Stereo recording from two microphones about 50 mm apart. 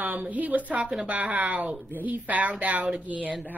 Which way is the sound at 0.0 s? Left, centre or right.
Right.